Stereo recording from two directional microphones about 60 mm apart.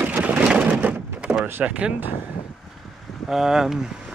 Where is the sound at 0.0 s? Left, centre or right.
Right.